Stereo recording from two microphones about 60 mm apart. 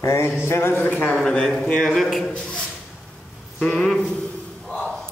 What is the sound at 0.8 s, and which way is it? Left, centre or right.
A man's voice, centre.